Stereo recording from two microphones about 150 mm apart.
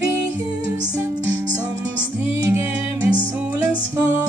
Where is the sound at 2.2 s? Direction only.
15° right (ahead or behind).